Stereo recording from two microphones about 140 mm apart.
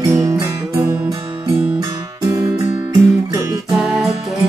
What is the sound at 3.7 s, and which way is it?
Music, centre (ahead or behind).